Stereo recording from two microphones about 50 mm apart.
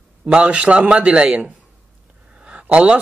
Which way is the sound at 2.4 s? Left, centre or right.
Right.